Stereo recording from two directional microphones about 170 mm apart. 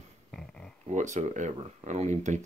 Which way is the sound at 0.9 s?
45° right (ahead or behind).